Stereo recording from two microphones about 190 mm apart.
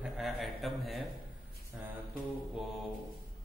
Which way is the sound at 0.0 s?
Centre (ahead or behind).